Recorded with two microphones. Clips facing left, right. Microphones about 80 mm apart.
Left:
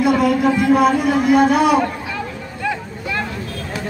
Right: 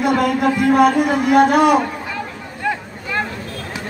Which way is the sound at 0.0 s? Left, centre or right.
Right.